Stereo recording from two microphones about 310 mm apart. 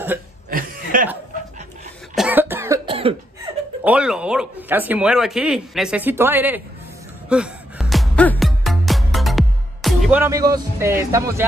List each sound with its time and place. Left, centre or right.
0.5 s chuckle: right
2.1 s cough: centre
3.8 s speech: centre
7.2 s music: centre